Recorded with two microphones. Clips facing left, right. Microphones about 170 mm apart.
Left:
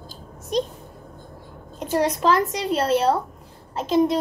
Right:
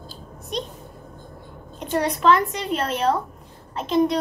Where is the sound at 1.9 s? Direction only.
35° left (ahead or behind).